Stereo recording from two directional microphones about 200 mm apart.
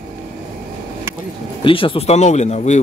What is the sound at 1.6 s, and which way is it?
Speech, 25° left (ahead or behind).